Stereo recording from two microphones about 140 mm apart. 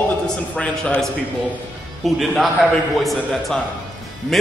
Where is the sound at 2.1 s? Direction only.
Centre (ahead or behind).